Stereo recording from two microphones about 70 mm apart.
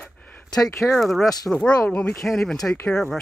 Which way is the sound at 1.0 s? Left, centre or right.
Centre.